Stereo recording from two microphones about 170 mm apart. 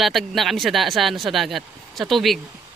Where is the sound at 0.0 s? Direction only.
Centre (ahead or behind).